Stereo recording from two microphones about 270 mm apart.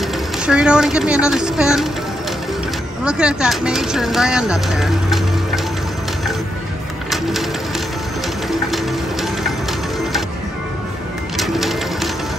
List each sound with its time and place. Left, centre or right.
0.5 s speech: centre
3.0 s speech: centre
8.5 s music: centre
11.3 s pigeon: centre